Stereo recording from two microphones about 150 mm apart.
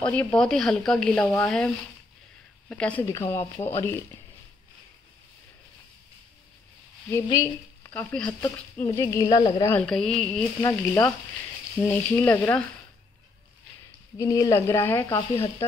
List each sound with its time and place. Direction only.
0.0 s speech: 10° left (ahead or behind)
2.7 s speech: 10° left (ahead or behind)
7.1 s speech: 20° left (ahead or behind)
7.9 s speech: 10° left (ahead or behind)
8.8 s speech: 20° left (ahead or behind)
9.8 s speech: 5° left (ahead or behind)
14.1 s speech: 25° left (ahead or behind)